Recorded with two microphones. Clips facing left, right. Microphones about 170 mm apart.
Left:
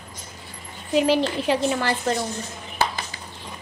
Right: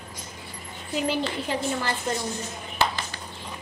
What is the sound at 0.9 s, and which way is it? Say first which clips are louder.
A woman's voice: left 7 dB; 90° left.